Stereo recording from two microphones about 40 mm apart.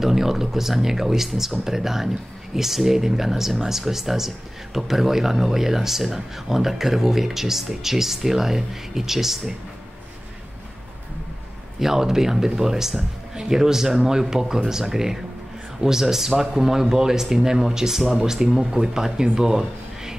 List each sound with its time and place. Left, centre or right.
0.0 s speech: centre
11.8 s speech: centre
19.3 s a sound: centre